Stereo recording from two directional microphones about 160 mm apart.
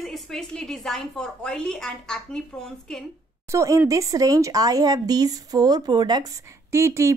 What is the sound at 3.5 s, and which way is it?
A woman's voice, 20° right (ahead or behind).